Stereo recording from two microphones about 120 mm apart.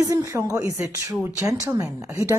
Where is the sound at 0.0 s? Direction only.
25° right (ahead or behind).